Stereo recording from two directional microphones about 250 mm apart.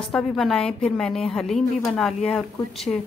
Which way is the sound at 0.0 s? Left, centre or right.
Centre.